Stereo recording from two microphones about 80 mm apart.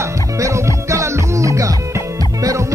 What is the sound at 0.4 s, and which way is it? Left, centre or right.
Music, right.